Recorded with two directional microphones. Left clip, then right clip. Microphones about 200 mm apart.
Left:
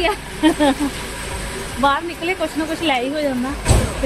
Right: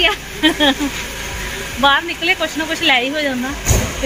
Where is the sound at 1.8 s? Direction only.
Centre (ahead or behind).